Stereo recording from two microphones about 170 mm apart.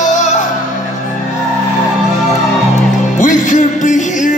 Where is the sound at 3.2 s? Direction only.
45° left (ahead or behind).